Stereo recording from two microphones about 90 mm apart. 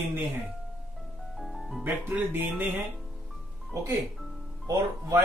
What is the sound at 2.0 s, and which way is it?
Speech, 20° right (ahead or behind).